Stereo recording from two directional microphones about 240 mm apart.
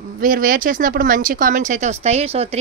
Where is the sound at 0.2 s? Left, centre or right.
Right.